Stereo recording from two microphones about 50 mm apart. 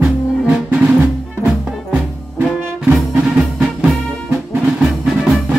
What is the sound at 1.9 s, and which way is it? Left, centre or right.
Music, centre.